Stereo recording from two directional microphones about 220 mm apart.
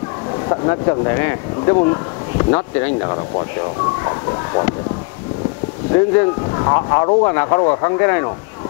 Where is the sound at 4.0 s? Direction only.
20° left (ahead or behind).